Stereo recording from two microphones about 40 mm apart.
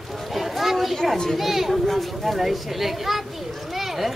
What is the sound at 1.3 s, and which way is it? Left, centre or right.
Speech, centre.